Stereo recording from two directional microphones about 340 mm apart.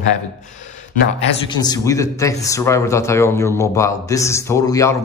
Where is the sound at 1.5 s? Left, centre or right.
Centre.